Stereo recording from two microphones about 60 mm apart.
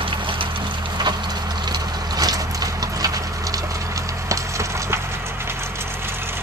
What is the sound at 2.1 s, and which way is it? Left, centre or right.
Clip-clop, right.